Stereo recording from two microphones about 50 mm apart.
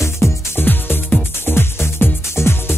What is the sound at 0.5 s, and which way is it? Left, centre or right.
Music, left.